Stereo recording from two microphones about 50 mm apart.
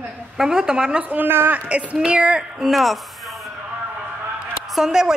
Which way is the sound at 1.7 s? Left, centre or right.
Right.